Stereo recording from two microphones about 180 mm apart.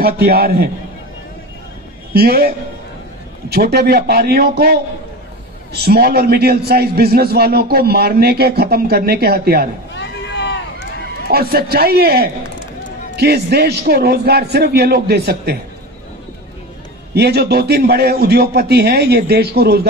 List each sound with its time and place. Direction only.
0.0 s a man's voice: 60° right (ahead or behind)
2.1 s a man's voice: 60° right (ahead or behind)
9.9 s run: 80° left
11.2 s a man's voice: 60° right (ahead or behind)
17.1 s a man's voice: 65° right (ahead or behind)